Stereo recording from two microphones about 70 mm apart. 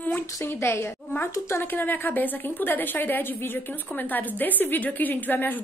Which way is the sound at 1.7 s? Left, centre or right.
Left.